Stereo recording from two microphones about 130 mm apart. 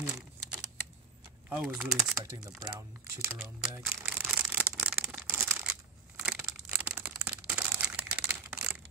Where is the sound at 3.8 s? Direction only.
5° right (ahead or behind).